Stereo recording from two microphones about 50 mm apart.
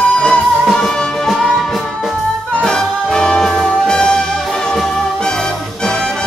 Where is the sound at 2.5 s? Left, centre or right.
Centre.